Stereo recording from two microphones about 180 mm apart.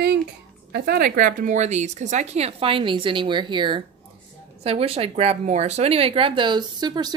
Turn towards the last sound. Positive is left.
turn(degrees=-25)  # may be behind; listen again after turning